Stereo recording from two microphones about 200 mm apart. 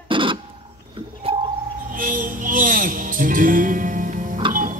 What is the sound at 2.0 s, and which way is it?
Music, 40° right (ahead or behind).